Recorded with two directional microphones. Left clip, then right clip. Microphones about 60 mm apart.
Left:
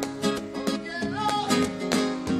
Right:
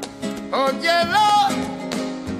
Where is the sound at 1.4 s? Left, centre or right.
Right.